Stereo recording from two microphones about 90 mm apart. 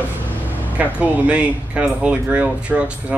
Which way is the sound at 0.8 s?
15° right (ahead or behind).